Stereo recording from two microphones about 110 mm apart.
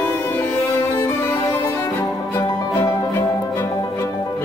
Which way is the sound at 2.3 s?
30° left (ahead or behind).